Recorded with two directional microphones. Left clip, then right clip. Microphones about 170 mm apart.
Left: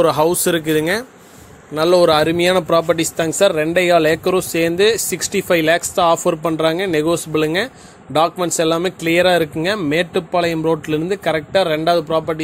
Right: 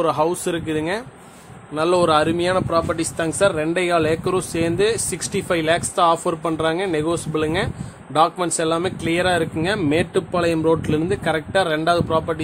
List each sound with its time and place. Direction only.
0.0 s speech: 25° left (ahead or behind)
1.8 s speech: 15° left (ahead or behind)
2.4 s speech: 35° left (ahead or behind); by 12.4 s 20° left (ahead or behind)